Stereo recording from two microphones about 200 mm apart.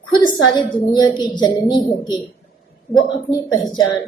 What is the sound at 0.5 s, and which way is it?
A woman's voice, 20° left (ahead or behind).